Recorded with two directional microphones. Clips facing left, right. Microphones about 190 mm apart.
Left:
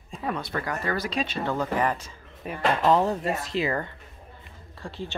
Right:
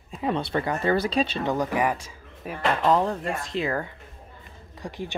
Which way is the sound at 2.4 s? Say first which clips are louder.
Even; centre (ahead or behind).